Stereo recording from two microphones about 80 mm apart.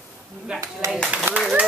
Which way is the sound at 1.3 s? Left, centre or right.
Right.